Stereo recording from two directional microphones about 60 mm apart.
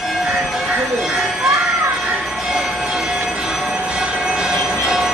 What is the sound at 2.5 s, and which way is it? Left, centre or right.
Train, centre.